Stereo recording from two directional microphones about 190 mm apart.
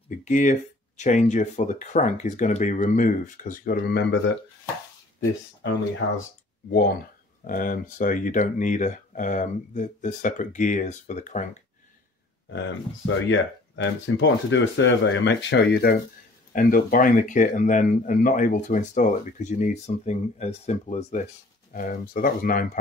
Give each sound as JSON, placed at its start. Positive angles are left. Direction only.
{"t": 0.2, "sound": "speech", "side_deg": 40}
{"t": 6.7, "sound": "speech", "side_deg": 55}
{"t": 12.5, "sound": "speech", "side_deg": 70}
{"t": 21.7, "sound": "speech", "side_deg": 45}